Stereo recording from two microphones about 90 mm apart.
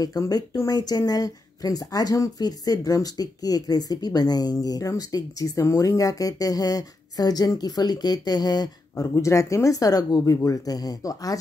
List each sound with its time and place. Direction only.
0.0 s speech: 45° left (ahead or behind)
9.0 s speech: 35° left (ahead or behind)